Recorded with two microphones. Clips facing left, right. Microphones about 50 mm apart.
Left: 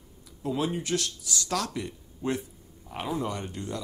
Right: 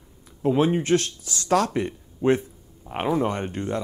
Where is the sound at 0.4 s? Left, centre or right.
Right.